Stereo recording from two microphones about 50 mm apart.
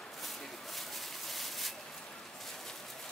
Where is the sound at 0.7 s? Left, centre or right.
Centre.